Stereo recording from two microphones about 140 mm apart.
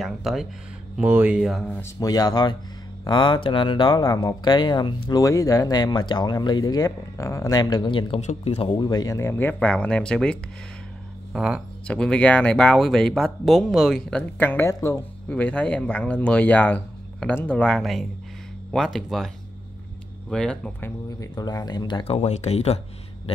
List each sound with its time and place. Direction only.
0.0 s speech: centre (ahead or behind)
0.9 s speech: 10° right (ahead or behind)
1.8 s speech: 25° left (ahead or behind)
8.2 s speech: 50° left (ahead or behind); by 11.6 s 5° right (ahead or behind)
11.9 s speech: 10° left (ahead or behind)
14.4 s speech: 15° left (ahead or behind)
21.2 s speech: 25° left (ahead or behind); by 22.8 s 50° left (ahead or behind)